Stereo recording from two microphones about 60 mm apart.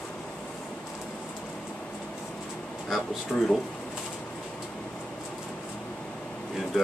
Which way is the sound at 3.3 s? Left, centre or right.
Left.